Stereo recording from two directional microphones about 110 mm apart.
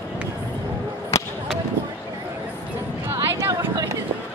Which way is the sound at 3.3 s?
25° right (ahead or behind).